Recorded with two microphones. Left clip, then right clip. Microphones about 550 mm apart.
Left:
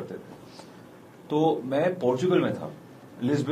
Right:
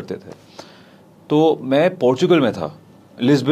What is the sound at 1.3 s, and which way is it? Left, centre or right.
Speech, right.